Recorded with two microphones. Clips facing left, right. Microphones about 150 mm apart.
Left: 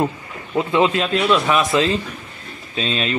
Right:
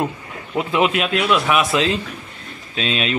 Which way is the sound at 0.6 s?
15° right (ahead or behind).